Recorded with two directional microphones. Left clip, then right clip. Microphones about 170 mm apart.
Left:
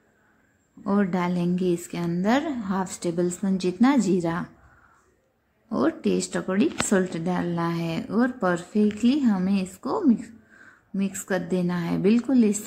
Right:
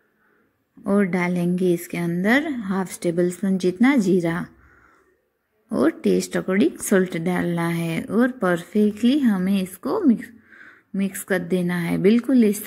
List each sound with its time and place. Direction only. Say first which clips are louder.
0.8 s a woman's voice: right 4 dB; 15° right (ahead or behind)
5.7 s a woman's voice: right 4 dB; 20° right (ahead or behind)